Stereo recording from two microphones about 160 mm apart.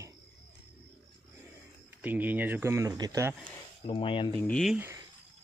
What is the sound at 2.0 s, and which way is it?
Speech, 10° right (ahead or behind).